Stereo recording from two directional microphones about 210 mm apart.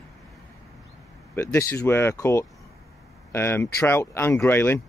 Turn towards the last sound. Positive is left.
turn(degrees=10)  # may be behind; listen again after turning